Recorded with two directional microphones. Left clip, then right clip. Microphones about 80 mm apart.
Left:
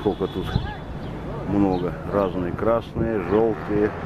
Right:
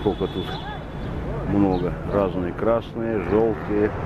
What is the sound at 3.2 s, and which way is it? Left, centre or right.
Speech, left.